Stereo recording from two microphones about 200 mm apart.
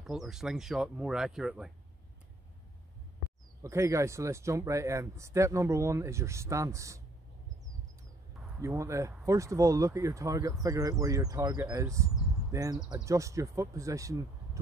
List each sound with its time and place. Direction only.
0.0 s speech: centre (ahead or behind)
3.6 s speech: 15° right (ahead or behind)
8.5 s speech: 15° right (ahead or behind)